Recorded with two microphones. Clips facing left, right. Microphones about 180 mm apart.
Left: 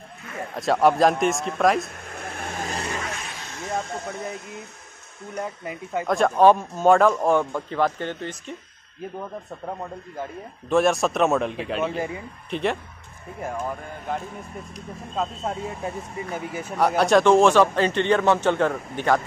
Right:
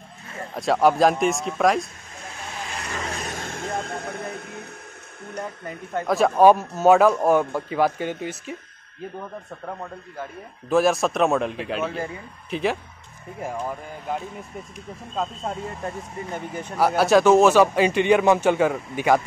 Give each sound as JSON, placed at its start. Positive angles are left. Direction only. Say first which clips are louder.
{"t": 0.6, "sound": "speech", "louder": "even", "side_deg": 0}
{"t": 2.1, "sound": "vehicle", "louder": "left 3 dB", "side_deg": 55}
{"t": 3.2, "sound": "vehicle", "louder": "right 5 dB", "side_deg": -45}
{"t": 5.3, "sound": "speech", "louder": "left 2 dB", "side_deg": 10}
{"t": 6.0, "sound": "speech", "louder": "right 1 dB", "side_deg": -5}
{"t": 10.7, "sound": "speech", "louder": "even", "side_deg": 0}